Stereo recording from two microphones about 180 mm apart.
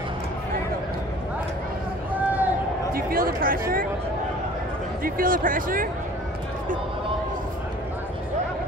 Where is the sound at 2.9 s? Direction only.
55° right (ahead or behind).